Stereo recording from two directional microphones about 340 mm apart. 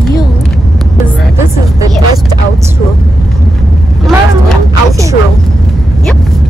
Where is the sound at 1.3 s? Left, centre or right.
Centre.